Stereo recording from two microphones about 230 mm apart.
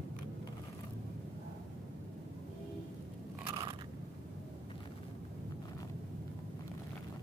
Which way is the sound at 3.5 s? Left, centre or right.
Centre.